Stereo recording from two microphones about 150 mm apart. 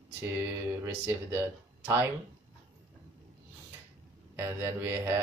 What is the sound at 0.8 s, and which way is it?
Speech, 15° right (ahead or behind).